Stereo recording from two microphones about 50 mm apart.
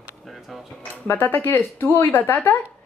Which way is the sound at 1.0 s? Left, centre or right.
Left.